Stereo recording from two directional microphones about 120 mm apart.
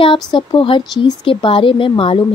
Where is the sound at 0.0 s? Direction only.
45° left (ahead or behind).